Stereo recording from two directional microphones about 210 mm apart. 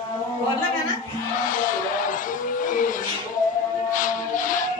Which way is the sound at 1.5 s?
40° left (ahead or behind).